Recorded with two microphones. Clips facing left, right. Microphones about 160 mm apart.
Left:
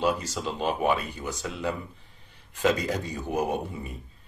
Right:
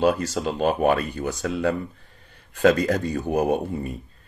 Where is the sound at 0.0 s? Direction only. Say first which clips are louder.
Right 6 dB; 55° right (ahead or behind).